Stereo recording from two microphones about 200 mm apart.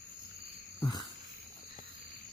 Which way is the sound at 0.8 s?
20° left (ahead or behind).